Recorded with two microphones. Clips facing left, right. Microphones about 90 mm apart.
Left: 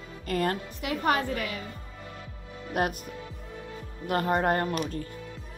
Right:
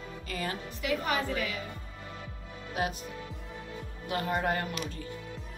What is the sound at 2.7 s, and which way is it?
Speech, 55° left (ahead or behind).